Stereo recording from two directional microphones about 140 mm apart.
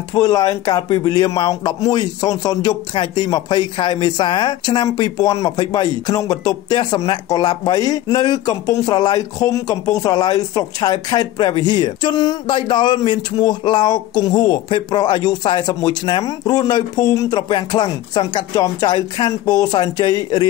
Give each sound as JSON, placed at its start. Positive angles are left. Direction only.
{"t": 0.1, "sound": "speech", "side_deg": 25}